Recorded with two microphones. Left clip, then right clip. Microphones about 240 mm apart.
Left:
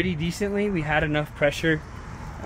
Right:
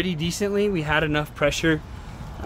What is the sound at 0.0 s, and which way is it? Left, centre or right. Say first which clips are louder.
Speech: right 1 dB; centre.